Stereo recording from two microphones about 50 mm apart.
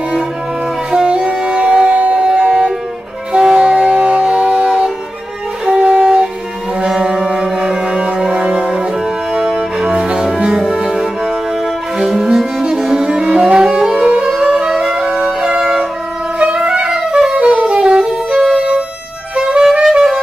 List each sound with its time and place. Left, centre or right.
0.9 s music: centre
1.9 s music: right
2.1 s music: centre
9.8 s cello: centre
10.4 s music: centre